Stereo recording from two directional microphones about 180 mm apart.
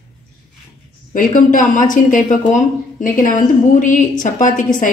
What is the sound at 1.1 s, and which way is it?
A woman's voice, 50° left (ahead or behind).